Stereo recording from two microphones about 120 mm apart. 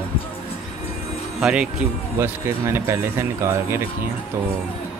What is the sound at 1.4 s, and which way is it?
Speech, 10° right (ahead or behind).